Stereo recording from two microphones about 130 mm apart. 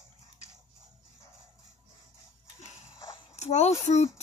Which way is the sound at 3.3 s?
60° left (ahead or behind).